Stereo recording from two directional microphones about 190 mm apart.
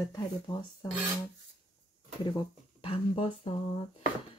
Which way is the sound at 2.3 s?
25° left (ahead or behind).